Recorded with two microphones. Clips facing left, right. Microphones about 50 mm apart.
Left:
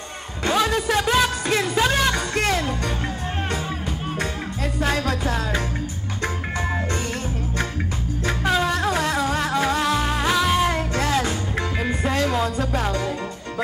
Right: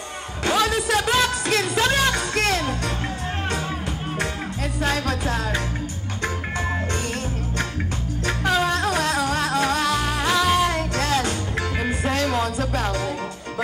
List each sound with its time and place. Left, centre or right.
0.4 s music: centre
4.8 s music: centre
8.6 s music: left
12.1 s music: centre